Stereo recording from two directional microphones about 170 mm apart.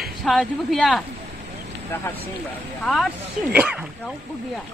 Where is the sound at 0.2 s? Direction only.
Centre (ahead or behind).